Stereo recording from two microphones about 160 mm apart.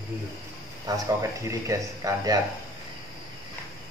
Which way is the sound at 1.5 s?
20° right (ahead or behind).